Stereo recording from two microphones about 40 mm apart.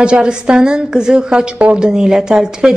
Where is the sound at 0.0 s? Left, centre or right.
Right.